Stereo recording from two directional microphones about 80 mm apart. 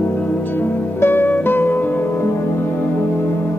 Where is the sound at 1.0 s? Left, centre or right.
Left.